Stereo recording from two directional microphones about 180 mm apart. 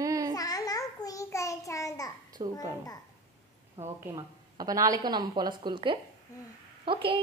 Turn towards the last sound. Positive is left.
turn(degrees=-30)  # may be behind; listen again after turning